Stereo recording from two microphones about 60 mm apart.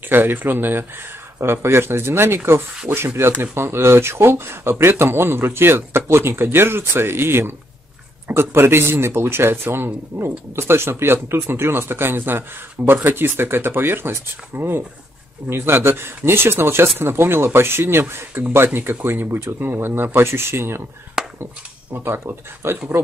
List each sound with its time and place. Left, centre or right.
0.1 s speech: right
21.9 s speech: right